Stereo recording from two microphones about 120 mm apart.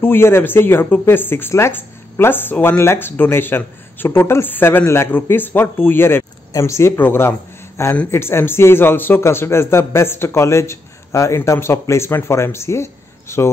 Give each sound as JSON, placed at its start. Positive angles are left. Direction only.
{"t": 0.0, "sound": "a man's voice", "side_deg": 20}